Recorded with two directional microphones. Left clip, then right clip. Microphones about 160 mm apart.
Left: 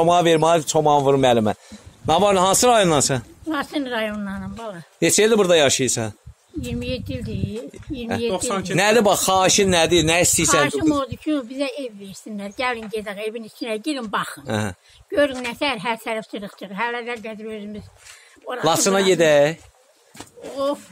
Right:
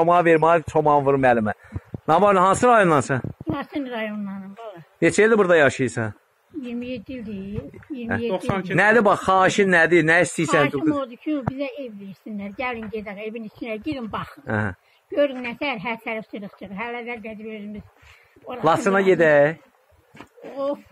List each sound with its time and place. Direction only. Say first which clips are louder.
0.0 s a man's voice: even; 45° left (ahead or behind); by 3.3 s 25° left (ahead or behind)
3.5 s a woman's voice: left 6 dB; 10° left (ahead or behind)
6.6 s speech: left 4 dB; 10° left (ahead or behind)
18.9 s a woman's voice: left 1 dB; 25° left (ahead or behind)